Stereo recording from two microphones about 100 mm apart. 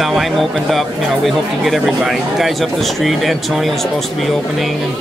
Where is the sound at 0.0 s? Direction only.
Centre (ahead or behind).